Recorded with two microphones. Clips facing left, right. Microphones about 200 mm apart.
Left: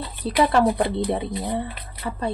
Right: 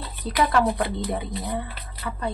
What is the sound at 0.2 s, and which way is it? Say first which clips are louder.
Speech: left 3 dB; 30° left (ahead or behind).